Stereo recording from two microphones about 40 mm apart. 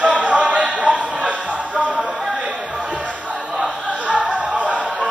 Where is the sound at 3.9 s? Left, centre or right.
Right.